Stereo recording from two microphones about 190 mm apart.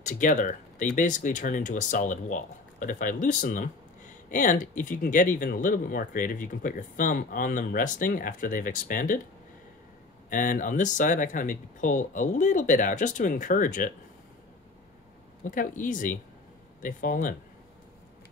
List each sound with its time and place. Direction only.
0.0 s speech: 40° left (ahead or behind)
10.3 s speech: 45° left (ahead or behind)
15.5 s speech: 45° left (ahead or behind)